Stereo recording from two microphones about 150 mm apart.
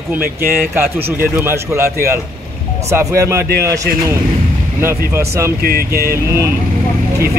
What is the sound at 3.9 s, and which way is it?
Speech, 90° right.